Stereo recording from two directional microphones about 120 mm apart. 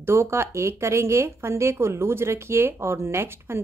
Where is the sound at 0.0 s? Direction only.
20° right (ahead or behind).